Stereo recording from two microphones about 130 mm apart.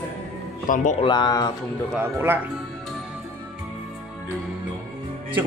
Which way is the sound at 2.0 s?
15° right (ahead or behind).